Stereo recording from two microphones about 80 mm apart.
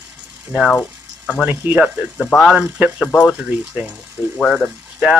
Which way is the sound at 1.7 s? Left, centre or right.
Centre.